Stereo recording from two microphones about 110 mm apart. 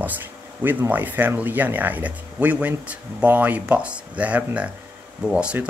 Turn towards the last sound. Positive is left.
turn(degrees=-10)  # may be behind; listen again after turning